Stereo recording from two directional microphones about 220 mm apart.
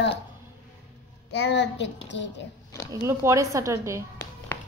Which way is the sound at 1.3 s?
50° left (ahead or behind).